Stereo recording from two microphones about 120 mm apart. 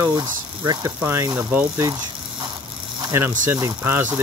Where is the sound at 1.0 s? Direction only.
20° right (ahead or behind).